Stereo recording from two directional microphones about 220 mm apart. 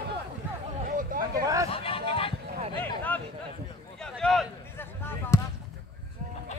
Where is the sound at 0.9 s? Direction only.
40° right (ahead or behind).